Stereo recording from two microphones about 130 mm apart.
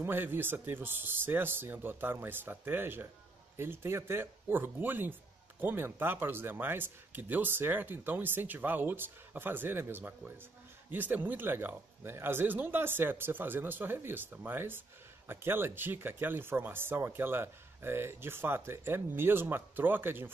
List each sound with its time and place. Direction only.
0.0 s speech: 15° right (ahead or behind)